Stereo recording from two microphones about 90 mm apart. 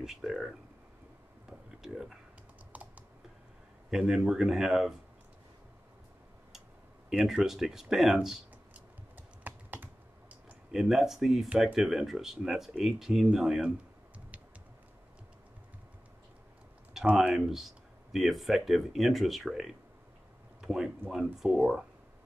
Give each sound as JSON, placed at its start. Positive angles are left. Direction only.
{"t": 0.0, "sound": "speech", "side_deg": -5}
{"t": 1.8, "sound": "speech", "side_deg": -5}
{"t": 2.7, "sound": "typing", "side_deg": -15}
{"t": 3.9, "sound": "speech", "side_deg": -5}
{"t": 7.1, "sound": "speech", "side_deg": -10}
{"t": 9.1, "sound": "typing", "side_deg": -20}
{"t": 10.7, "sound": "speech", "side_deg": -5}
{"t": 17.1, "sound": "speech", "side_deg": -5}